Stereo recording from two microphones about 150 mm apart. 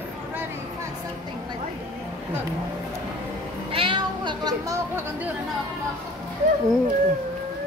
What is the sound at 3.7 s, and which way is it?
Cat, 35° right (ahead or behind).